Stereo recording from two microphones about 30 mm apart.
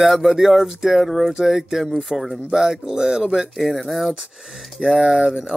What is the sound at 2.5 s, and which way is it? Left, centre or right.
Speech, centre.